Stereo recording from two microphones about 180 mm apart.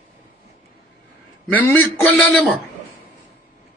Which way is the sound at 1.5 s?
10° left (ahead or behind).